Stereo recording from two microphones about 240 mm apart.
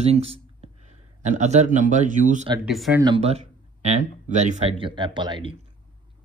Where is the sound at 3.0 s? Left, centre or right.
Right.